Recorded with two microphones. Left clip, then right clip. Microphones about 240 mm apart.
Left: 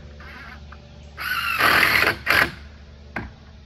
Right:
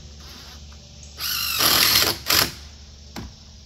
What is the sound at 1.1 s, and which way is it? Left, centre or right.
Squeal, right.